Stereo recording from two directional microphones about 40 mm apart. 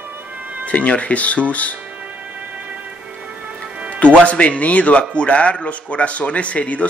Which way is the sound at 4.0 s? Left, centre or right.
Left.